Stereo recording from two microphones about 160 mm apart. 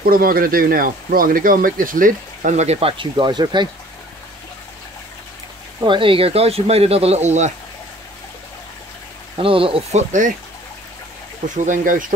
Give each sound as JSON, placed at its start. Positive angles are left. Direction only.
{"t": 0.0, "sound": "speech", "side_deg": -65}
{"t": 5.8, "sound": "speech", "side_deg": -30}
{"t": 9.4, "sound": "speech", "side_deg": -35}
{"t": 11.4, "sound": "speech", "side_deg": -50}